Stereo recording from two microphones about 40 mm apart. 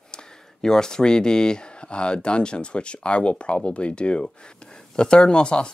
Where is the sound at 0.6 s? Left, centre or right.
Centre.